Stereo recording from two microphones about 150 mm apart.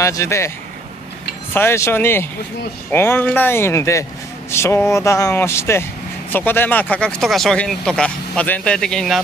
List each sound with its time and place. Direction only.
0.0 s a man's voice: 20° left (ahead or behind)
1.5 s speech: 15° left (ahead or behind)